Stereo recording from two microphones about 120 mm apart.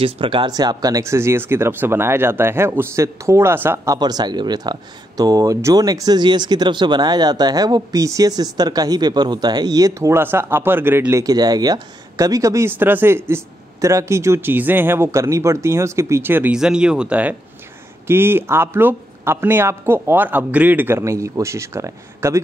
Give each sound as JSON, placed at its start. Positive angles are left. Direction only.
{"t": 0.0, "sound": "speech", "side_deg": -45}
{"t": 0.5, "sound": "speech", "side_deg": -35}
{"t": 16.5, "sound": "speech", "side_deg": -5}